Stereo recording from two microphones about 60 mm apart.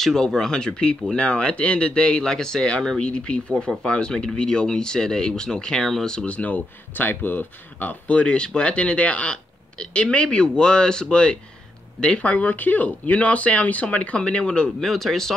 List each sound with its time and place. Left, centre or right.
0.0 s speech: centre
12.3 s speech: left
14.9 s speech: centre